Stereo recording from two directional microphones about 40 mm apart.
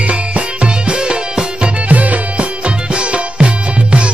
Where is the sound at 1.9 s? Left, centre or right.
Right.